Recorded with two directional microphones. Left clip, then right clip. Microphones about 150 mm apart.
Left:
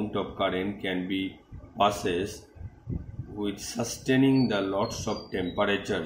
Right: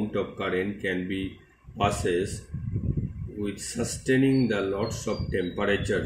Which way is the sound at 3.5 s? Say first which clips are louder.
Right 1 dB; 55° left (ahead or behind).